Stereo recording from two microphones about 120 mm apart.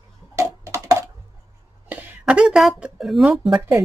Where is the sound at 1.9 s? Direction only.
5° right (ahead or behind).